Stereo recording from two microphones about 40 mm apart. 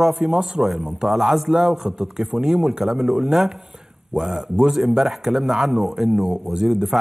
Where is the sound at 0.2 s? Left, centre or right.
Centre.